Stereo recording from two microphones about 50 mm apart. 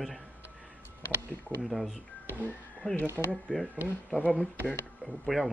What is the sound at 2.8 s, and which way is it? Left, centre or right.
Speech, left.